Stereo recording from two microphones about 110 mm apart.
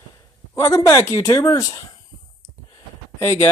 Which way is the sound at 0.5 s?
30° left (ahead or behind).